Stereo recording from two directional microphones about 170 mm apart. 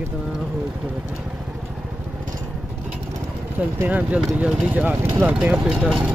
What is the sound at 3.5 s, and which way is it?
Speech, 10° right (ahead or behind).